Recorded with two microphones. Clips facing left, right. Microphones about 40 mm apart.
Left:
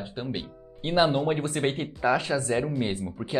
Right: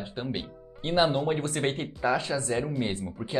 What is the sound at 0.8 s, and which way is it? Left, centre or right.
Speech, centre.